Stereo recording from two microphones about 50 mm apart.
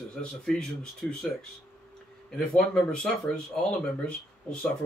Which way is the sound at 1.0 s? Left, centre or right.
Left.